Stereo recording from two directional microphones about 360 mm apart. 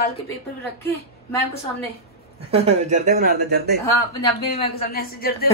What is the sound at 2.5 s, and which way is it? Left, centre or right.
Speech, centre.